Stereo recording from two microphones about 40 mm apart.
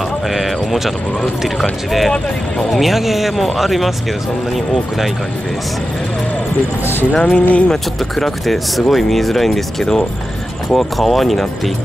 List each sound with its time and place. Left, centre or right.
0.3 s speech: centre
7.2 s music: left
7.7 s speech: centre